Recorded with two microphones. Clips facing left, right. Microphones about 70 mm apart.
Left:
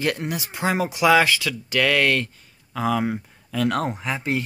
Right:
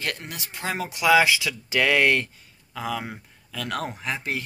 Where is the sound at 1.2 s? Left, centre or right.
Centre.